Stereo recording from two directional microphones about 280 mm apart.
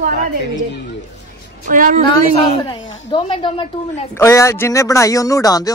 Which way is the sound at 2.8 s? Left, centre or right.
Left.